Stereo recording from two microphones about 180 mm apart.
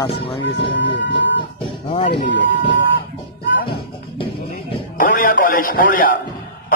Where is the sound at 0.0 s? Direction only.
30° left (ahead or behind).